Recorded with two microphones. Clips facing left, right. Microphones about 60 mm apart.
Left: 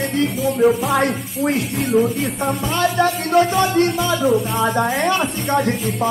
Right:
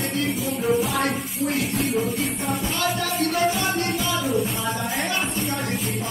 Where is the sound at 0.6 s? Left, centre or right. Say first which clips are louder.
Left 7 dB; left.